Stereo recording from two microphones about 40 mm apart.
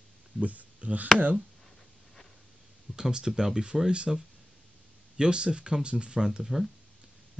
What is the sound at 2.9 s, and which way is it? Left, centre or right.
Speech, centre.